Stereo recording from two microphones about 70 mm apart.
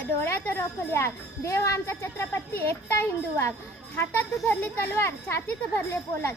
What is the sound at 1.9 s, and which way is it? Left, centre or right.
A woman's voice, left.